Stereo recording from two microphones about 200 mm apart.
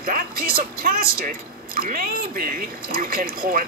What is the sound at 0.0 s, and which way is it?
Speech, 45° right (ahead or behind).